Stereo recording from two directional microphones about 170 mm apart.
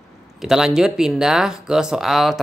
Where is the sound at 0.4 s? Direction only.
5° right (ahead or behind).